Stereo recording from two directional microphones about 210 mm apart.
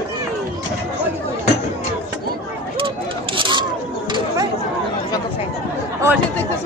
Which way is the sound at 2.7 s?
25° right (ahead or behind).